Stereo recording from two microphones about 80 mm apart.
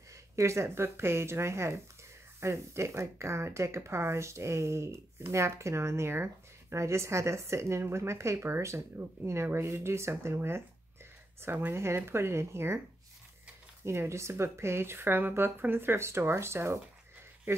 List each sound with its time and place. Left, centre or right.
0.1 s speech: right
13.8 s speech: right
17.5 s speech: right